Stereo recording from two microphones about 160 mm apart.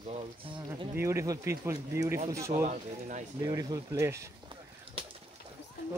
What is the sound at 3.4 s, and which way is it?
Speech, 25° right (ahead or behind).